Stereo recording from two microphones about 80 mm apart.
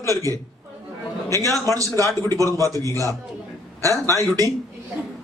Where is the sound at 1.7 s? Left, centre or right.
Right.